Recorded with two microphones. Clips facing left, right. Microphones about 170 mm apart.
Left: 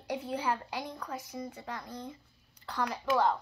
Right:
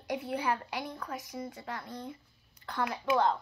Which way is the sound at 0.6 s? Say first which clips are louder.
Right 1 dB; 15° left (ahead or behind).